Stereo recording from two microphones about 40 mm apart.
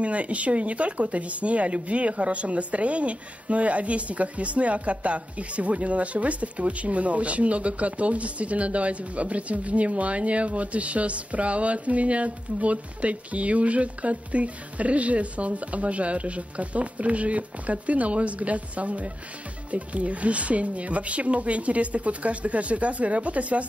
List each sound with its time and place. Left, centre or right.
0.0 s speech: right